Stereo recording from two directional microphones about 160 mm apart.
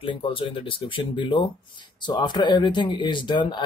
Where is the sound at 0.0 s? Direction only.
35° left (ahead or behind).